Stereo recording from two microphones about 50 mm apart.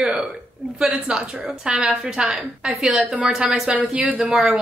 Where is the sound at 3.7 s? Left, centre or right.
Right.